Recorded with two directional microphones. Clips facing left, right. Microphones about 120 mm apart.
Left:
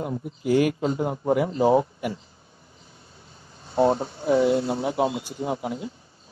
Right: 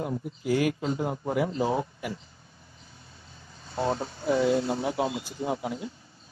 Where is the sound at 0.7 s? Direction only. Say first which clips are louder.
Left 4 dB; 35° left (ahead or behind).